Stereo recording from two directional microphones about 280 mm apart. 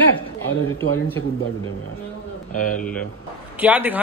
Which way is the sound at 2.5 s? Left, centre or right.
Left.